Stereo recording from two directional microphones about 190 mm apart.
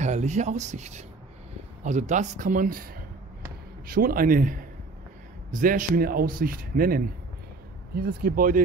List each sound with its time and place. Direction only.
0.0 s a man's voice: 35° right (ahead or behind)